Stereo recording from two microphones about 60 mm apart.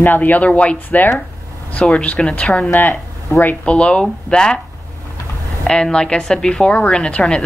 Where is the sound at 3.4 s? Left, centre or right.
Left.